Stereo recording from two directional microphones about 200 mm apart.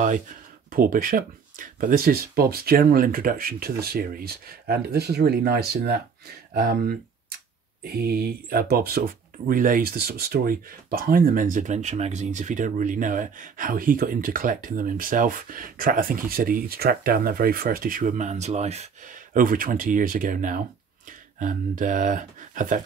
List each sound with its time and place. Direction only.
0.7 s speech: 45° right (ahead or behind)